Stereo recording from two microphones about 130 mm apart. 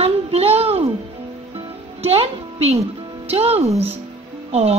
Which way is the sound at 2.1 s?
50° right (ahead or behind).